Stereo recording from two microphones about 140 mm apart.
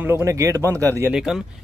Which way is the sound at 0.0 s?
20° right (ahead or behind).